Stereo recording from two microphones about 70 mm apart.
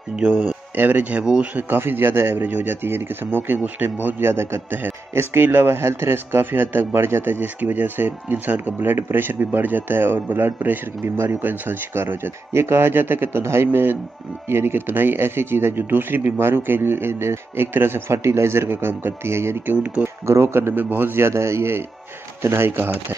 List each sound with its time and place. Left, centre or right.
0.1 s speech: centre
1.2 s speech: centre
1.5 s a man's voice: right
19.7 s speech: right
20.2 s a man's voice: right